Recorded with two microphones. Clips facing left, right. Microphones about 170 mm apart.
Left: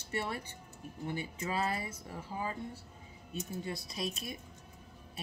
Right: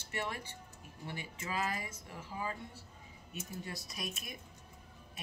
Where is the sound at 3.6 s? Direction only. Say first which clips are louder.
Left 5 dB; 25° left (ahead or behind).